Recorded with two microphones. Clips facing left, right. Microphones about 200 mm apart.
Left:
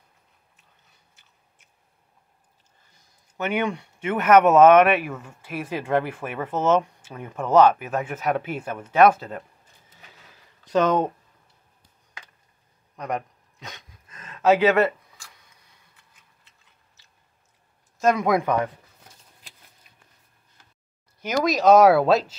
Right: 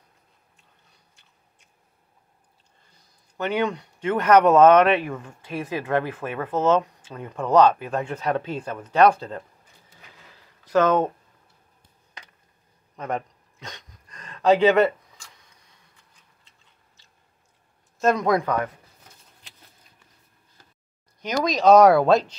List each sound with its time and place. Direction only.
3.3 s speech: 10° left (ahead or behind)
10.7 s speech: 15° left (ahead or behind)
12.9 s a sound: centre (ahead or behind)
17.9 s speech: 5° left (ahead or behind)
21.2 s speech: 5° left (ahead or behind)